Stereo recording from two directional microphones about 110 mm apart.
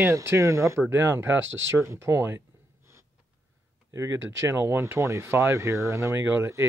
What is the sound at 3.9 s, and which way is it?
Speech, 25° right (ahead or behind).